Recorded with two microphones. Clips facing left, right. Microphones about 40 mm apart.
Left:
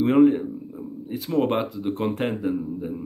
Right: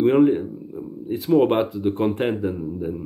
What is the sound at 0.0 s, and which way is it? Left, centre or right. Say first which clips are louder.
Speech: right 1 dB; centre.